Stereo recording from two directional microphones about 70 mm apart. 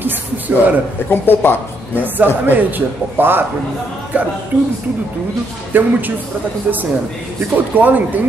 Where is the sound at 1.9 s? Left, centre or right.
Right.